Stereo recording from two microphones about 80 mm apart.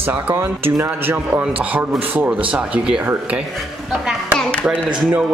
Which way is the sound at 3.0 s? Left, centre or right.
Right.